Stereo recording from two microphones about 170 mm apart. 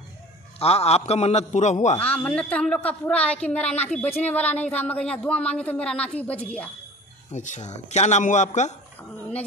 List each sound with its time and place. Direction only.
0.6 s a man's voice: 35° left (ahead or behind)
2.0 s a woman's voice: 5° left (ahead or behind)
7.2 s speech: 45° left (ahead or behind)